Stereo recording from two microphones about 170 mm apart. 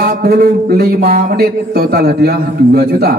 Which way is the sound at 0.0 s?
65° right (ahead or behind).